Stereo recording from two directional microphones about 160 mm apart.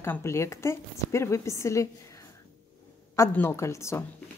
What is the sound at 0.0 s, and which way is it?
A woman's voice, 15° left (ahead or behind).